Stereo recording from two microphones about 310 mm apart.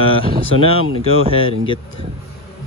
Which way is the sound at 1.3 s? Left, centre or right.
Centre.